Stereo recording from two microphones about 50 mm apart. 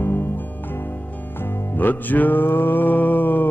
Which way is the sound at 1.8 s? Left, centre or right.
Left.